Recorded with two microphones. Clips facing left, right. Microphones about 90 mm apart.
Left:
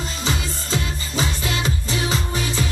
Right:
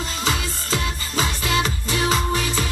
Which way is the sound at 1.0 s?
40° right (ahead or behind).